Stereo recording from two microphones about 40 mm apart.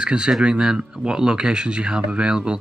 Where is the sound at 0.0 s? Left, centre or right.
Right.